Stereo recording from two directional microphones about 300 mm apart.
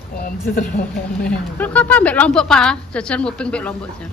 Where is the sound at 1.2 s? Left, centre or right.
Centre.